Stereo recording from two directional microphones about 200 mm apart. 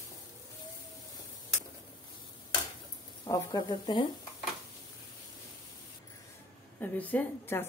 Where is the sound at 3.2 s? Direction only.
20° left (ahead or behind).